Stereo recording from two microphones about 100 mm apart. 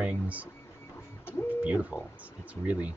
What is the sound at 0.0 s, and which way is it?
Speech, 15° right (ahead or behind).